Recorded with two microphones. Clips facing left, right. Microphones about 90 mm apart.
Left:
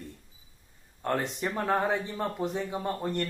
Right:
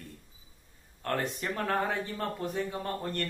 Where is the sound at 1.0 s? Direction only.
20° left (ahead or behind).